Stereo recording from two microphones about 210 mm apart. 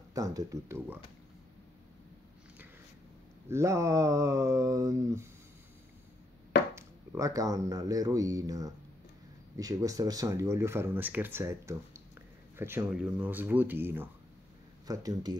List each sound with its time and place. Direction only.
0.1 s speech: 15° right (ahead or behind)
3.4 s speech: 15° right (ahead or behind)
6.7 s speech: 15° right (ahead or behind)